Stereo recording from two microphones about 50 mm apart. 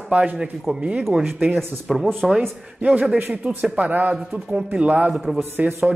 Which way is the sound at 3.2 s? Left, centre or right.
Right.